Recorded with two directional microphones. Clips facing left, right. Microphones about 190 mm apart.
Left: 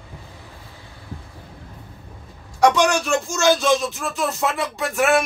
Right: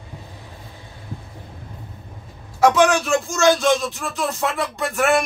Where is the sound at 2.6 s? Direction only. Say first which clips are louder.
Right 1 dB; centre (ahead or behind).